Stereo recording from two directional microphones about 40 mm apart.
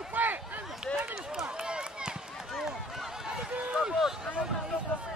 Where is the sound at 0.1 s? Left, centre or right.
Right.